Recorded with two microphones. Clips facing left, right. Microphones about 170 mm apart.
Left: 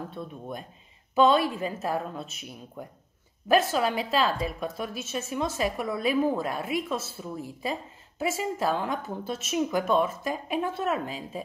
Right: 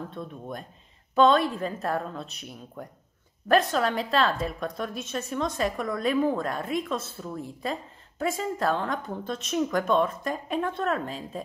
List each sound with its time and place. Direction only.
0.1 s a woman's voice: 5° left (ahead or behind)